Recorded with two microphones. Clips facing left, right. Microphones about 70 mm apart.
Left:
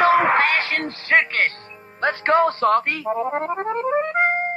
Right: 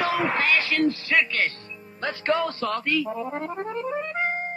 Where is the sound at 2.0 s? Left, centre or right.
Left.